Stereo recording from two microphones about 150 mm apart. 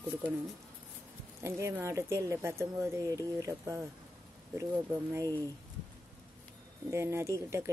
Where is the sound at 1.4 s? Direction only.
20° right (ahead or behind).